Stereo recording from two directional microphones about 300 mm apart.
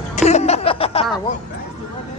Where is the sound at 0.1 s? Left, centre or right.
Left.